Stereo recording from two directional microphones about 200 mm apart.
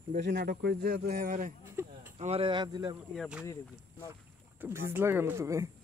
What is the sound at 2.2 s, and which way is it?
Speech, 30° right (ahead or behind).